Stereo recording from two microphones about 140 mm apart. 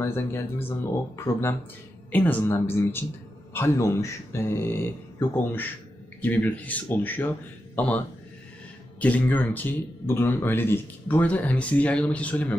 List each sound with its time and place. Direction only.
0.0 s speech: 15° left (ahead or behind)
9.0 s speech: 10° left (ahead or behind)